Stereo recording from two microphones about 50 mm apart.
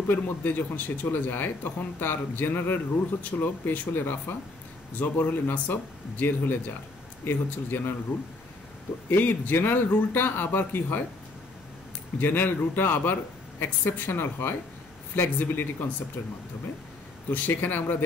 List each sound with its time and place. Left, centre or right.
0.1 s speech: left
3.2 s speech: left
9.1 s speech: left
12.2 s speech: left
17.5 s speech: left